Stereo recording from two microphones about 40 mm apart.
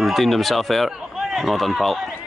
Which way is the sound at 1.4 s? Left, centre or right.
Centre.